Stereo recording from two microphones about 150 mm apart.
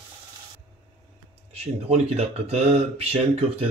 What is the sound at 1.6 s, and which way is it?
Speech, 45° right (ahead or behind).